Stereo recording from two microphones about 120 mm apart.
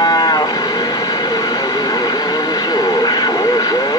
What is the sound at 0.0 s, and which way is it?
Livestock, 35° left (ahead or behind).